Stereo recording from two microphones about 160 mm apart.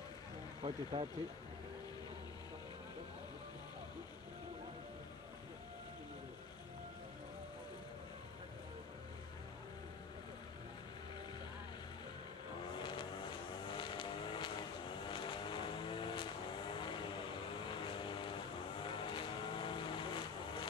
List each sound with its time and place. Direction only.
0.6 s speech: 35° right (ahead or behind)
12.7 s vehicle: 30° left (ahead or behind)